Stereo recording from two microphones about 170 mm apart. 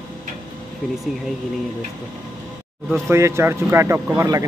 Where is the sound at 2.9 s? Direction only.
15° right (ahead or behind).